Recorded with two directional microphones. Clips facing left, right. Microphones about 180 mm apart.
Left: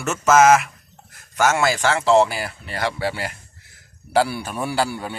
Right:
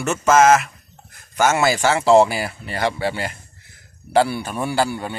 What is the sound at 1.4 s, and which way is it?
Speech, 5° right (ahead or behind).